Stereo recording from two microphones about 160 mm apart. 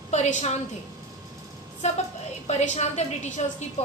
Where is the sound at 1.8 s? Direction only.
40° left (ahead or behind).